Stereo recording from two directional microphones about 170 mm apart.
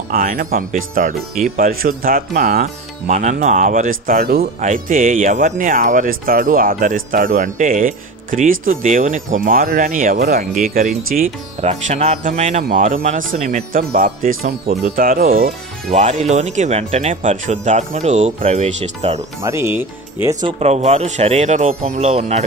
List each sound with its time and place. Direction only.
0.1 s speech: 55° right (ahead or behind)
4.6 s speech: 50° right (ahead or behind)
11.6 s speech: 40° right (ahead or behind); by 15.5 s 60° right (ahead or behind)
15.9 s speech: 40° right (ahead or behind)
19.4 s speech: 15° right (ahead or behind)
20.4 s speech: 40° right (ahead or behind)